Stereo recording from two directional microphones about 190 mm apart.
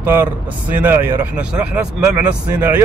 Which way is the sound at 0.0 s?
10° right (ahead or behind).